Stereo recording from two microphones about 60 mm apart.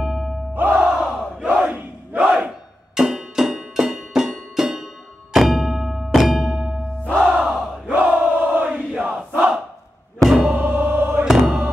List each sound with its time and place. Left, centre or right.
0.0 s music: centre
0.7 s crowd: centre
2.3 s music: centre
7.3 s battle cry: centre
7.8 s crowd: right
10.3 s music: centre
10.6 s music: right
11.2 s music: centre